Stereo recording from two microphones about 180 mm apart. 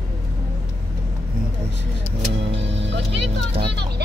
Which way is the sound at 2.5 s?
75° right (ahead or behind).